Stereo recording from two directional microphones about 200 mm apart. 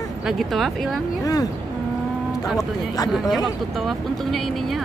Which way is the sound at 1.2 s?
20° left (ahead or behind).